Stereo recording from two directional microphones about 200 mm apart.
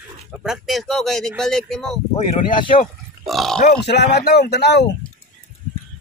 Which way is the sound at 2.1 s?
30° left (ahead or behind).